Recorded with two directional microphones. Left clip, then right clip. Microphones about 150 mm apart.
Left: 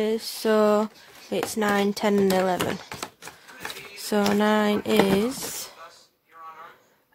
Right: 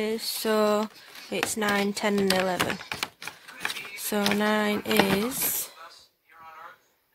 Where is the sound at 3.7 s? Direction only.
10° left (ahead or behind).